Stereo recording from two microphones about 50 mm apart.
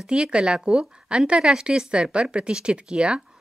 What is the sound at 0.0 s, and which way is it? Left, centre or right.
A woman's voice, centre.